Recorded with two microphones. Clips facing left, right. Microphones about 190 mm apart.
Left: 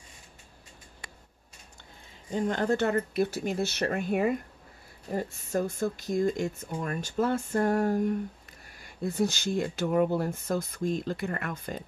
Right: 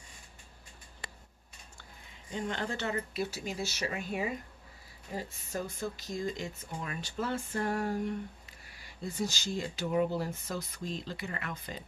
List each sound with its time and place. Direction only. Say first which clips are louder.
2.3 s speech: left 9 dB; 45° left (ahead or behind)